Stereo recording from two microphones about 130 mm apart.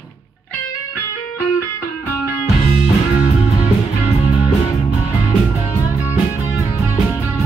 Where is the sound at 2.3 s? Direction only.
90° left.